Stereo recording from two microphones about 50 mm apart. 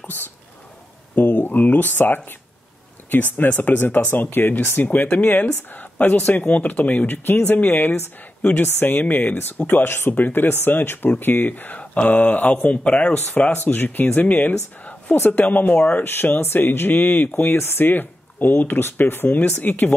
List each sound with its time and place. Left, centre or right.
0.0 s whispering: left
1.1 s speech: left
4.8 s speech: left
7.7 s speech: left
8.4 s speech: left
8.7 s speech: left
13.7 s speech: left
16.0 s speech: left